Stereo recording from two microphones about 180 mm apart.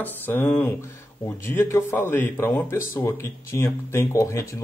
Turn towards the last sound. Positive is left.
turn(degrees=15)  # may be behind; listen again after turning